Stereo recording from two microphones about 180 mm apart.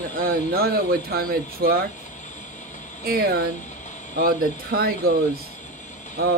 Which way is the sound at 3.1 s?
60° right (ahead or behind).